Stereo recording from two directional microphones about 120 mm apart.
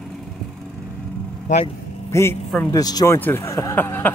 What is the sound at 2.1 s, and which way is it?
Speech, 25° left (ahead or behind).